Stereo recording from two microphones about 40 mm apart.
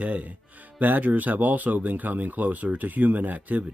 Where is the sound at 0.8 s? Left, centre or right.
Right.